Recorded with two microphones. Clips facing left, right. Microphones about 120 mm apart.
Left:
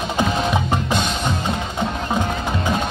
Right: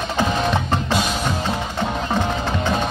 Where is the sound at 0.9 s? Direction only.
5° right (ahead or behind).